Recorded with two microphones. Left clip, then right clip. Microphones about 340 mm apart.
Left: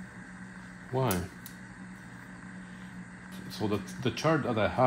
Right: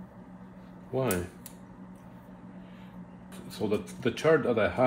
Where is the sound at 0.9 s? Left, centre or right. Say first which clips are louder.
Right 1 dB; centre.